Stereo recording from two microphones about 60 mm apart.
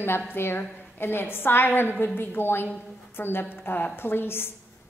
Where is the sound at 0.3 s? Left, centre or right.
Left.